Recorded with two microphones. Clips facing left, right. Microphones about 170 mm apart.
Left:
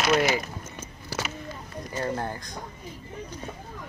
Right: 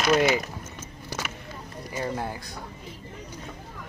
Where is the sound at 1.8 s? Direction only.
10° right (ahead or behind).